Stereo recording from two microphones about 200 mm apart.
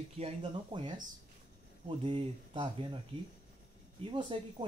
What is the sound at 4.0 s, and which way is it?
Speech, 25° right (ahead or behind).